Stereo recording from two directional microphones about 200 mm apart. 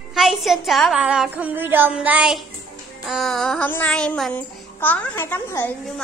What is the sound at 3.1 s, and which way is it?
Child singing, centre (ahead or behind).